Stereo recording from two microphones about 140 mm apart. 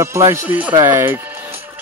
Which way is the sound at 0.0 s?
20° right (ahead or behind).